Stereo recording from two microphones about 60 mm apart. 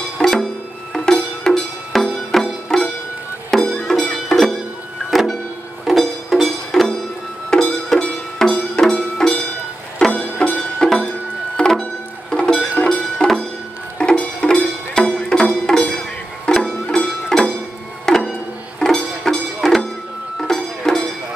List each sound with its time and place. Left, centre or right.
0.2 s music: centre